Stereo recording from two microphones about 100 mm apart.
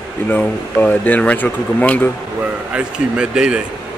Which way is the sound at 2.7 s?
10° right (ahead or behind).